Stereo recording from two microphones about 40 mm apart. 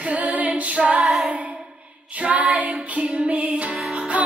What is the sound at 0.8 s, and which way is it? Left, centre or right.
Female singing, right.